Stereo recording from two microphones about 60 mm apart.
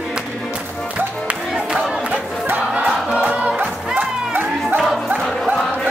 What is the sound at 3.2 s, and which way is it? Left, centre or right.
Music, right.